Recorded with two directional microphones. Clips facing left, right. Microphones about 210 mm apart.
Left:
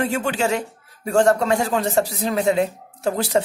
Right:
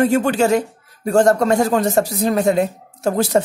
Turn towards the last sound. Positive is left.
turn(degrees=-45)  # may be behind; listen again after turning